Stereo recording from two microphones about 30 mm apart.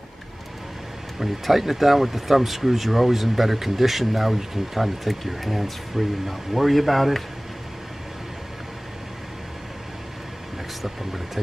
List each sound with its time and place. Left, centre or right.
1.2 s speech: centre